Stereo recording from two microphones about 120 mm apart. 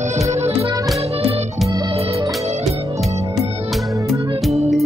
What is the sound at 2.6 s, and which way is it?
Music, centre (ahead or behind).